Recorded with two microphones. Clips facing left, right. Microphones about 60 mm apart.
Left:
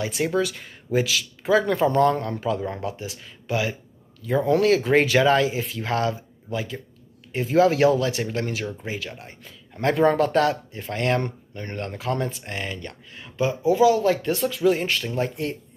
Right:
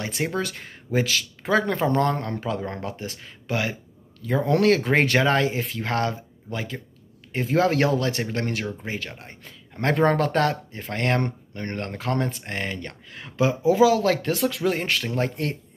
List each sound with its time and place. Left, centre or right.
0.4 s speech: right
1.7 s speech: right
13.1 s speech: right
13.7 s speech: right
15.1 s speech: right